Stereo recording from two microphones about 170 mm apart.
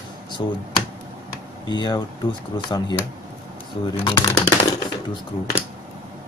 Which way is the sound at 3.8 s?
25° left (ahead or behind).